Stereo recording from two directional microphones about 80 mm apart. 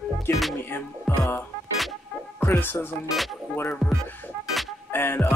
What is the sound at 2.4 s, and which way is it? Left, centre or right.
Speech, left.